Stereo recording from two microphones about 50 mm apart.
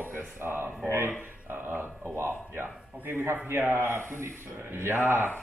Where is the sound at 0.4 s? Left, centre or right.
Right.